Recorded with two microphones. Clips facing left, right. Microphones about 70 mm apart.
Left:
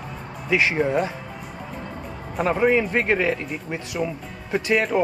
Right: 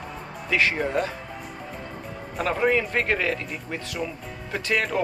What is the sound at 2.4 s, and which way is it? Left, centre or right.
Speech, centre.